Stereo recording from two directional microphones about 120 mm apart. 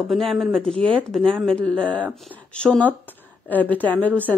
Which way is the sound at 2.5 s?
10° left (ahead or behind).